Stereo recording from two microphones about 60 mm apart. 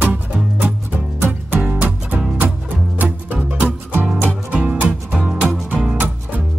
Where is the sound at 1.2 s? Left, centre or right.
Right.